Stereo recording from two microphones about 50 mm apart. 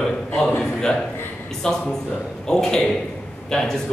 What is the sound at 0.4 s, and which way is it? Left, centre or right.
Speech, left.